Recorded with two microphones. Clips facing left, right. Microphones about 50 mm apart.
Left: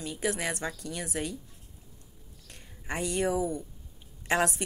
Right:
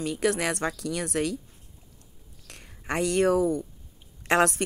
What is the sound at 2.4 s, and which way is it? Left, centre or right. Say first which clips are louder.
Speech: right 5 dB; right.